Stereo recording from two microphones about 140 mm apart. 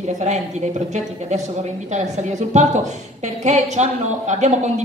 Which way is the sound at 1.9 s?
55° right (ahead or behind).